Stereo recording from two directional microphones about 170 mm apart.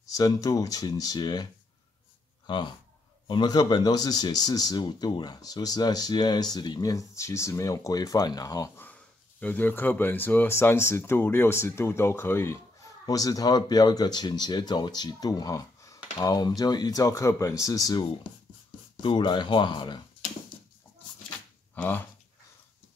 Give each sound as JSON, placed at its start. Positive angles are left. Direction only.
{"t": 0.0, "sound": "speech", "side_deg": 20}
{"t": 21.7, "sound": "speech", "side_deg": 10}